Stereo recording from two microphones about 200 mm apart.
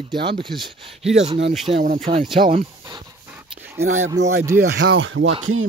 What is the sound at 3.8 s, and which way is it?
Speech, 90° right.